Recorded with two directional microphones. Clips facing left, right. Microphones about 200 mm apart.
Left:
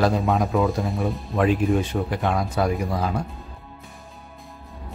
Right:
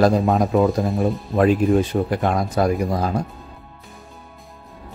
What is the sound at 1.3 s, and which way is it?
Speech, 40° right (ahead or behind).